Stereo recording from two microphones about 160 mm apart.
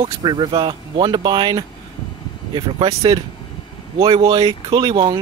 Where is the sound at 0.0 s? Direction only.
30° right (ahead or behind).